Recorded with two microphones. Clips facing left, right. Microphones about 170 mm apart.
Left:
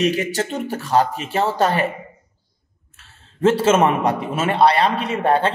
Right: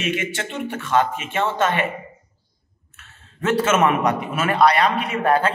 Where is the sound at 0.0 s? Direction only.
35° left (ahead or behind).